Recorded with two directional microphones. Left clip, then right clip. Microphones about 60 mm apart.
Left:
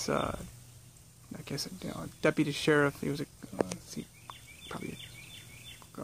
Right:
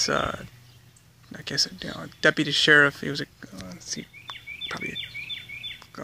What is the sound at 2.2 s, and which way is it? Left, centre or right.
Speech, centre.